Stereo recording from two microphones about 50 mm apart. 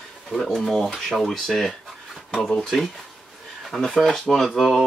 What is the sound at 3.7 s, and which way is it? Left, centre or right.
Speech, centre.